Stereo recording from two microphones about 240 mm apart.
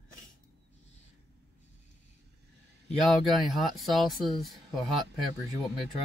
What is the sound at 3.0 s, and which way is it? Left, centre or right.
Speech, centre.